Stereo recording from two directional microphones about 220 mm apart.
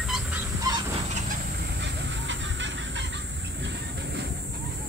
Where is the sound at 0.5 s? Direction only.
15° right (ahead or behind).